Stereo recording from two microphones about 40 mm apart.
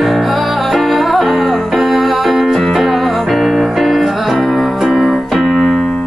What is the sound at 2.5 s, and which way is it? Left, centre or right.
Music, centre.